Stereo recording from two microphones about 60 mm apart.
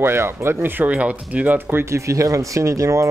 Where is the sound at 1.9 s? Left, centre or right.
Right.